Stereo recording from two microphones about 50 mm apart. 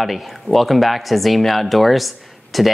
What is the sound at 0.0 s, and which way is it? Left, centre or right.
Speech, centre.